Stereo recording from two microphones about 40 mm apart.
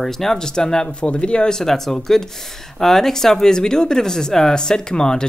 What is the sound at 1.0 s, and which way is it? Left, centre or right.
Speech, left.